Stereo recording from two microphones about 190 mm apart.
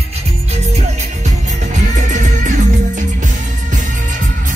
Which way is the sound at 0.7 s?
40° right (ahead or behind).